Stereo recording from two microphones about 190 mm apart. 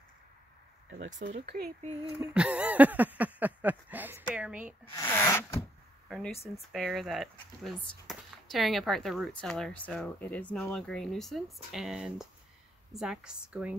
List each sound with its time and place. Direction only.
0.9 s speech: 40° right (ahead or behind)
1.4 s speech: 60° right (ahead or behind)
2.1 s a sound: 5° right (ahead or behind)
4.9 s speech: 15° left (ahead or behind)
6.0 s speech: centre (ahead or behind)